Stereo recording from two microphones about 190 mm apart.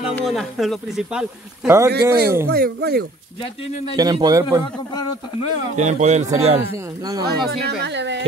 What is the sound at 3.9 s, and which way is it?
Speech, 20° right (ahead or behind).